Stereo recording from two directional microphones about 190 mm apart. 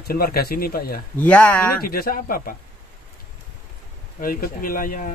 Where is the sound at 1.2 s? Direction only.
10° left (ahead or behind).